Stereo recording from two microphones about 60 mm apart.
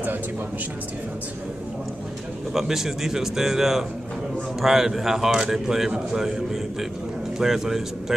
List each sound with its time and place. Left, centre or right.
2.5 s a man's voice: centre